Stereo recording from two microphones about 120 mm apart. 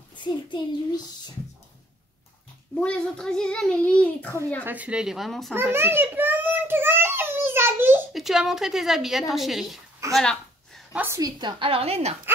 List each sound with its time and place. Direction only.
0.1 s a child's voice: 40° left (ahead or behind)
2.7 s a child's voice: 10° left (ahead or behind)
4.6 s a woman's voice: 10° right (ahead or behind)
5.5 s a sound: 20° right (ahead or behind)
8.1 s a woman's voice: 5° right (ahead or behind)
10.1 s a sound: 5° left (ahead or behind)
10.9 s a woman's voice: 15° right (ahead or behind)
11.1 s a woman's voice: 35° right (ahead or behind); by 12.2 s 60° right (ahead or behind)